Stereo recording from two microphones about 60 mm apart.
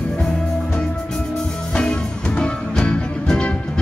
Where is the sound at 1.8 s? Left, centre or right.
Centre.